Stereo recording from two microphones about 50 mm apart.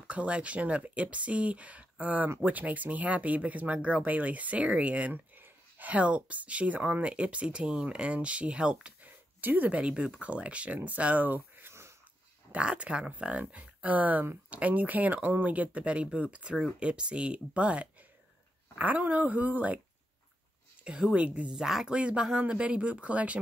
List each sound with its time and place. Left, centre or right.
0.0 s speech: right
9.0 s a sound: right
10.1 s speech: right
12.5 s speech: right
20.8 s speech: centre
21.1 s speech: right
21.5 s speech: centre
21.9 s speech: right